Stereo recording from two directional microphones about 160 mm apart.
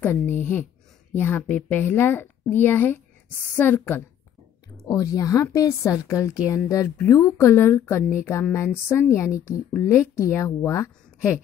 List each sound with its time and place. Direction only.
0.0 s speech: 15° left (ahead or behind)